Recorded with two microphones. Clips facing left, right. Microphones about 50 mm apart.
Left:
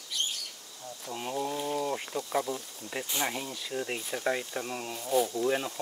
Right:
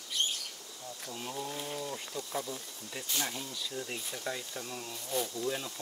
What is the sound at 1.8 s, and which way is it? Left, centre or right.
Speech, left.